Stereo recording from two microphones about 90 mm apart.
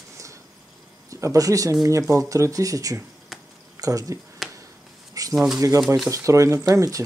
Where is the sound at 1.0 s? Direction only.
35° right (ahead or behind).